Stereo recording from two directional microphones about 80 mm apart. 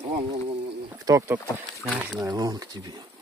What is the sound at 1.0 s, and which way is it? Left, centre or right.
Speech, right.